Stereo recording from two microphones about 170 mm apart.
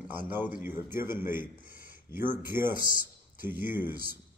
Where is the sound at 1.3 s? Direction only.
55° left (ahead or behind).